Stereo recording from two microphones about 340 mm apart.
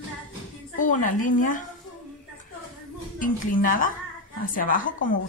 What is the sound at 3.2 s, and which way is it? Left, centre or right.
A woman's voice, left.